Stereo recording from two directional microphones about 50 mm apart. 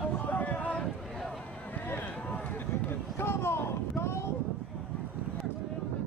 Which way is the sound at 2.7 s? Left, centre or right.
Left.